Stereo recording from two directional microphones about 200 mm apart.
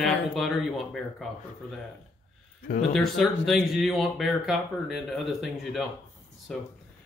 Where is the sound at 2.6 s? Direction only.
45° left (ahead or behind).